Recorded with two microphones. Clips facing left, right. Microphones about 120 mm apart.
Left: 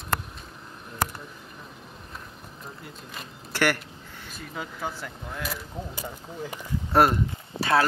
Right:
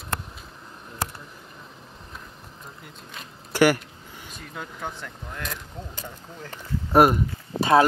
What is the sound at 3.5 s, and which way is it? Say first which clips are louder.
Speech: right 6 dB; 10° right (ahead or behind).